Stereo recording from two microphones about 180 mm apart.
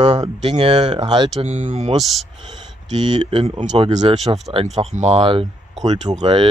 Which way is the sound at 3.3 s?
30° right (ahead or behind).